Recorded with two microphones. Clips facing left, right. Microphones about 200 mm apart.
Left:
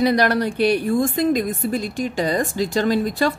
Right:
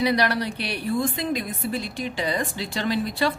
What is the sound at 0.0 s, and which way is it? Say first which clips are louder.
A woman's voice: left 5 dB; 45° left (ahead or behind).